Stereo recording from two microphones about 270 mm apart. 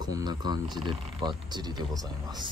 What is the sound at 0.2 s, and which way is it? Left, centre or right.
Speech, centre.